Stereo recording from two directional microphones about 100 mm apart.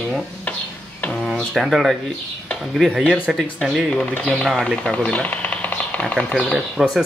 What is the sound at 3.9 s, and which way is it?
Speech, 15° left (ahead or behind).